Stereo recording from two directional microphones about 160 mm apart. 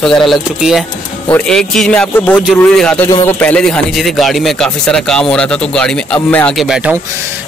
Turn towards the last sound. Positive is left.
turn(degrees=-5)  # may be behind; listen again after turning